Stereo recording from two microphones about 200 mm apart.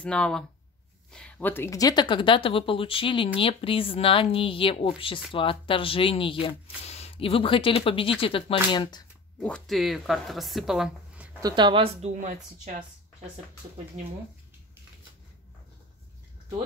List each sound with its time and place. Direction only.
0.0 s speech: 5° left (ahead or behind); by 9.0 s 25° left (ahead or behind)
9.4 s speech: 5° left (ahead or behind)
11.4 s speech: 25° right (ahead or behind); by 12.8 s 40° right (ahead or behind)